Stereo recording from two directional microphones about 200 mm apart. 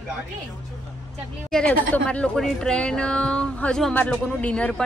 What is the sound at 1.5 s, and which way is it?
Speech, 5° left (ahead or behind).